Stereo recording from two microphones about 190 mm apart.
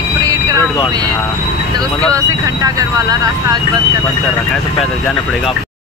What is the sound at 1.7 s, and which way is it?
Speech, 20° right (ahead or behind).